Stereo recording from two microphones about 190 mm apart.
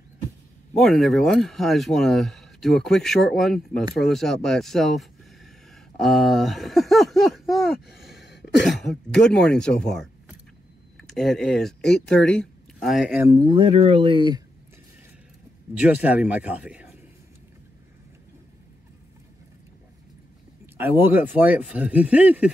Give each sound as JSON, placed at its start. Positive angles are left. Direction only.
{"t": 0.7, "sound": "speech", "side_deg": 0}
{"t": 13.2, "sound": "speech", "side_deg": -20}
{"t": 15.8, "sound": "speech", "side_deg": -10}
{"t": 20.7, "sound": "speech", "side_deg": -10}